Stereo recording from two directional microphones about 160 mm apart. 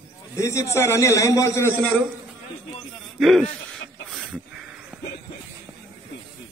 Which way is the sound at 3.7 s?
Centre (ahead or behind).